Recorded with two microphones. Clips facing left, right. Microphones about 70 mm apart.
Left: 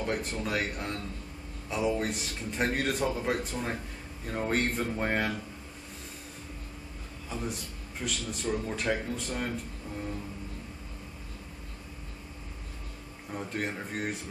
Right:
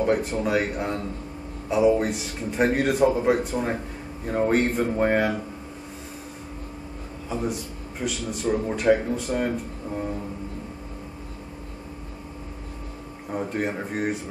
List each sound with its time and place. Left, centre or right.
0.0 s a man's voice: centre
7.2 s a man's voice: centre
8.5 s speech: centre
8.7 s a man's voice: centre
9.8 s vehicle: right
13.5 s speech: centre